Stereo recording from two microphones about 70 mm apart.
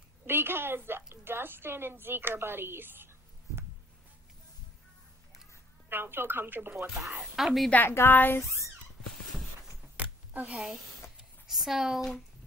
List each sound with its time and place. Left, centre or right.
0.3 s a woman's voice: right
5.9 s a woman's voice: right
7.2 s speech: centre
7.7 s a woman's voice: left
9.9 s a sound: centre
10.6 s speech: centre